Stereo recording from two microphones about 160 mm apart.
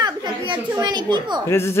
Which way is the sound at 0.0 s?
25° right (ahead or behind).